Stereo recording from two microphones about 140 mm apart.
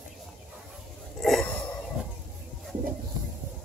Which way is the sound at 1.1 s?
Centre (ahead or behind).